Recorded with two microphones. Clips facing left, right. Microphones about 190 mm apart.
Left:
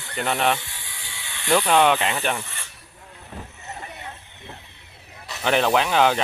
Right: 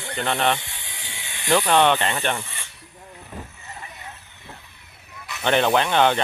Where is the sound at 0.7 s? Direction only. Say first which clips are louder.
Right 1 dB; 20° right (ahead or behind).